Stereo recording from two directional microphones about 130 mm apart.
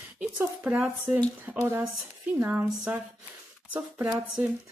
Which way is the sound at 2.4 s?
15° right (ahead or behind).